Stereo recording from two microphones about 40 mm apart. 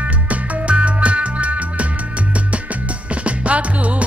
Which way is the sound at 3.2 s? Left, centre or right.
Right.